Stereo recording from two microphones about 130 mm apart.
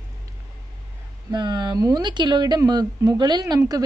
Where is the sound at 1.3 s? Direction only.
35° right (ahead or behind).